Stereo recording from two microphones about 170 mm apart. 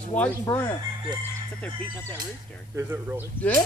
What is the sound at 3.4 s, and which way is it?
Speech, 10° left (ahead or behind).